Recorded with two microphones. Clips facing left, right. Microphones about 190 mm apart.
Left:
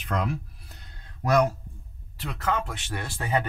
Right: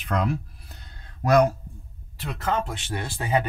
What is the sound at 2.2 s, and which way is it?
Speech, 20° right (ahead or behind).